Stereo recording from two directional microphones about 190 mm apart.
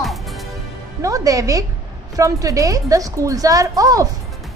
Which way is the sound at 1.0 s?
20° right (ahead or behind).